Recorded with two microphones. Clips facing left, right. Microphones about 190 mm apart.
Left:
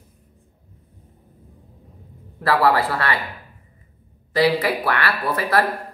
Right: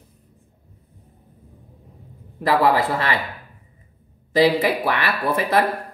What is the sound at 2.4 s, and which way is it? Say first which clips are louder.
Speech: even; 20° right (ahead or behind).